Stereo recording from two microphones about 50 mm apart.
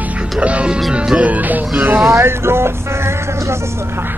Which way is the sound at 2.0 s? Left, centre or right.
Right.